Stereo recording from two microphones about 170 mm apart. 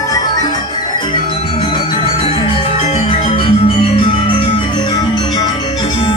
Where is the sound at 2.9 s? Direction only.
30° left (ahead or behind).